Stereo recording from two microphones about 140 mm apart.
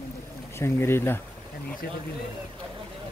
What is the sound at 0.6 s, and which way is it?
Speech, 20° left (ahead or behind).